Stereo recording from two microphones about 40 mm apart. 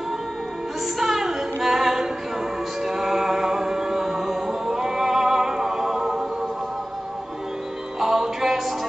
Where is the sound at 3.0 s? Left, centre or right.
Centre.